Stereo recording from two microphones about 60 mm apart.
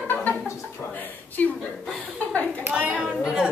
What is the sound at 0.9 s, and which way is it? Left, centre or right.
A woman's voice, left.